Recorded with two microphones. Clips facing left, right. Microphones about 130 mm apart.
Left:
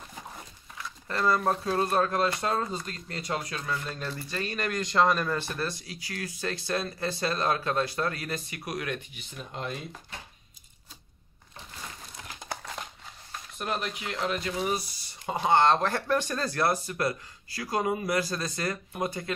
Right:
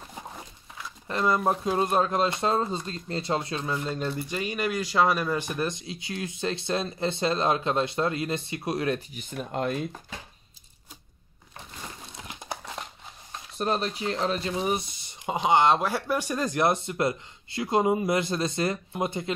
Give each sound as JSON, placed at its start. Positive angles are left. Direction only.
{"t": 1.0, "sound": "speech", "side_deg": -20}
{"t": 12.0, "sound": "crumpling", "side_deg": -20}
{"t": 13.3, "sound": "speech", "side_deg": -30}